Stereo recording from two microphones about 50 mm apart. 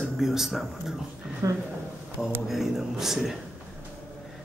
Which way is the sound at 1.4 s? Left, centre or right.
Right.